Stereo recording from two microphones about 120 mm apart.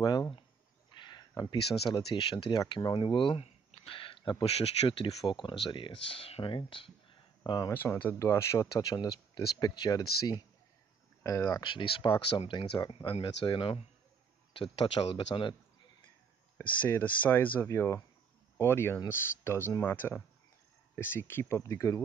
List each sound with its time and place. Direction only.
0.0 s speech: 35° left (ahead or behind)
7.7 s speech: 15° left (ahead or behind)
11.6 s speech: 45° left (ahead or behind)
16.5 s speech: 20° left (ahead or behind)